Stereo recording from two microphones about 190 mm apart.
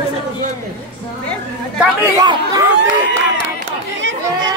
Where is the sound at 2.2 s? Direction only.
20° right (ahead or behind).